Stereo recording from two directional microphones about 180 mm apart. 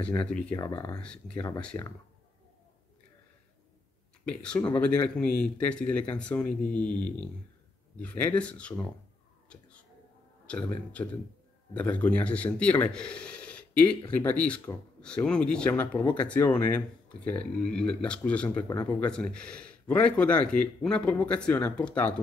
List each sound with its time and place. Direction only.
0.0 s speech: 5° left (ahead or behind)
0.6 s speech: 20° left (ahead or behind)
1.0 s speech: 5° left (ahead or behind)
4.3 s speech: 5° left (ahead or behind)
8.4 s speech: 5° left (ahead or behind)
9.5 s whispering: 5° left (ahead or behind)
11.7 s speech: 10° left (ahead or behind)
16.0 s speech: 25° left (ahead or behind)
16.3 s speech: 10° left (ahead or behind)